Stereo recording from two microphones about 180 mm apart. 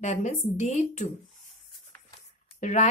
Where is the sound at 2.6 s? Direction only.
40° left (ahead or behind).